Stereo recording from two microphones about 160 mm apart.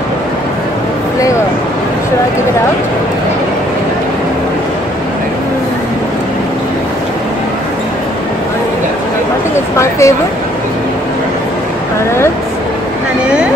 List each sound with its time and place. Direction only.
9.8 s speech: 20° left (ahead or behind)